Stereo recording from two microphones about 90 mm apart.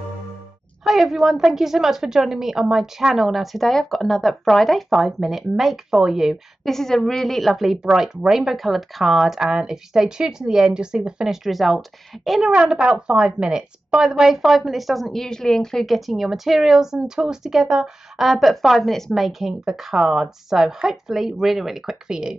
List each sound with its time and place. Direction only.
0.8 s a woman's voice: centre (ahead or behind)